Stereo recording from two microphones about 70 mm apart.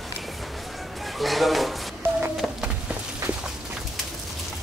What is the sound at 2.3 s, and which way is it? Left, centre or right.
Music, centre.